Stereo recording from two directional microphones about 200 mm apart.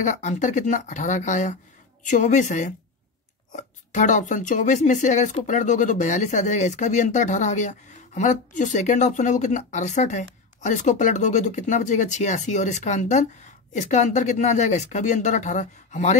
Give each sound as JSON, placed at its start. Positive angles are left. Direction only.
{"t": 0.0, "sound": "speech", "side_deg": 35}